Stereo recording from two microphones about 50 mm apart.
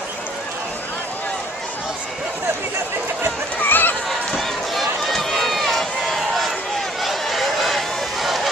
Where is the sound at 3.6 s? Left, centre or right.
Left.